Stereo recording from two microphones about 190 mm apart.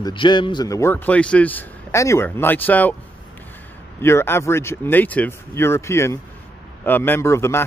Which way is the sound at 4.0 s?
10° left (ahead or behind).